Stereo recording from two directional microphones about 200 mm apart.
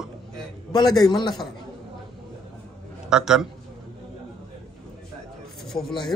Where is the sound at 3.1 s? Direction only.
5° right (ahead or behind).